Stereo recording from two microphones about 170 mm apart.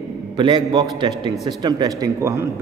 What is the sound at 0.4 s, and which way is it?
A man's voice, 25° right (ahead or behind).